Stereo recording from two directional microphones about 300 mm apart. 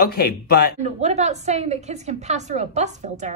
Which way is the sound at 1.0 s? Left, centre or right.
Right.